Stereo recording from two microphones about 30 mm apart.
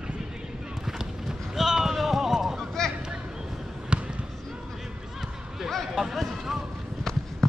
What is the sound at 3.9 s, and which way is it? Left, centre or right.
Basketball bounce, right.